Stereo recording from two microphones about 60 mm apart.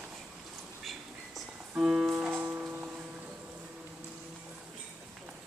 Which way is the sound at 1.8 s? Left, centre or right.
Centre.